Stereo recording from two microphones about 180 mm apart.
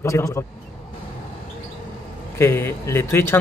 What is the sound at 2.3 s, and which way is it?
Speech, 15° left (ahead or behind).